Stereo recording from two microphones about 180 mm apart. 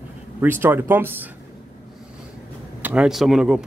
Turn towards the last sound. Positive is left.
turn(degrees=-5)  # may be behind; listen again after turning